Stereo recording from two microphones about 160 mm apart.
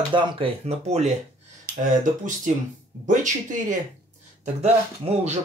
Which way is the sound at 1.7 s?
80° right.